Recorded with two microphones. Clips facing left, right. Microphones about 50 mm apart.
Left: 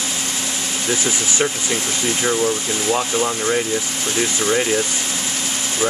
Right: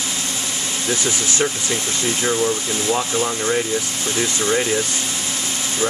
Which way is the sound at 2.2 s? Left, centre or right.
Centre.